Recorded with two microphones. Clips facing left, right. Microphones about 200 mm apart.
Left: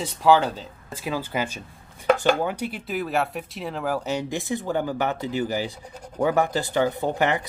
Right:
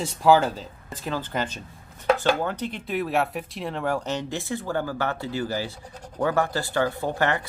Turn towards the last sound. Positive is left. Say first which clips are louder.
# left 2 dB
turn(degrees=15)  # may be behind; listen again after turning